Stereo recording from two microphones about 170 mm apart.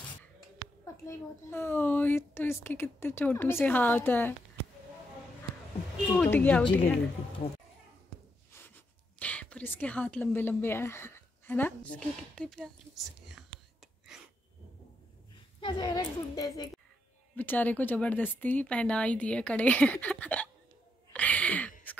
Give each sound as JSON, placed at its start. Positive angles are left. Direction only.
{"t": 1.0, "sound": "speech", "side_deg": 15}
{"t": 6.1, "sound": "speech", "side_deg": 10}
{"t": 9.2, "sound": "speech", "side_deg": 10}
{"t": 15.6, "sound": "a woman's voice", "side_deg": 25}
{"t": 17.4, "sound": "speech", "side_deg": 10}
{"t": 21.1, "sound": "a sound", "side_deg": 10}